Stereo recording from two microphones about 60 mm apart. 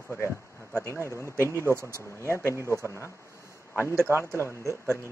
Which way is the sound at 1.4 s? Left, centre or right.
Right.